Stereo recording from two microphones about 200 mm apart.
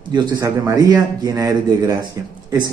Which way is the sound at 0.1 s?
20° right (ahead or behind).